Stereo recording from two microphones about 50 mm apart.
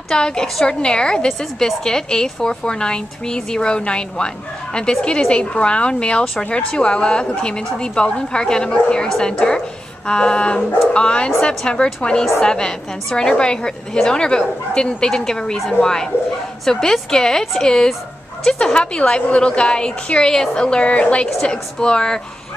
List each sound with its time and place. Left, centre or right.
0.1 s a woman's voice: centre